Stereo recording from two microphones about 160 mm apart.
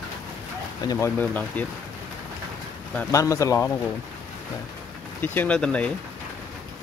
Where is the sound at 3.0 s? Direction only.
20° left (ahead or behind).